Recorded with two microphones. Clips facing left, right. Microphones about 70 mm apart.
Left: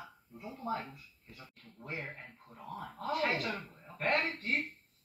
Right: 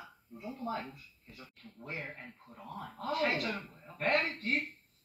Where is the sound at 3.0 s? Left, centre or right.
Left.